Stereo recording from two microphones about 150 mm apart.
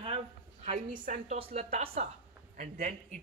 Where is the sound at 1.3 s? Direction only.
40° right (ahead or behind).